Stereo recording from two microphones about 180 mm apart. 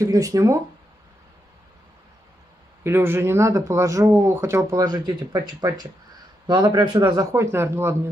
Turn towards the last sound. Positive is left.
turn(degrees=-15)  # may be behind; listen again after turning